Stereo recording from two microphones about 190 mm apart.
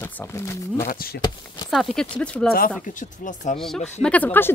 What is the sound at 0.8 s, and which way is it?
Speech, 50° left (ahead or behind).